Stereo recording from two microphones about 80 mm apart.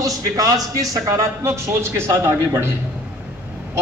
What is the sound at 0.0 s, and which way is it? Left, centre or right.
A man's voice, right.